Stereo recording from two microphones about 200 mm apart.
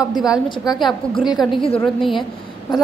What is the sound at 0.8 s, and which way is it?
A woman's voice, centre (ahead or behind).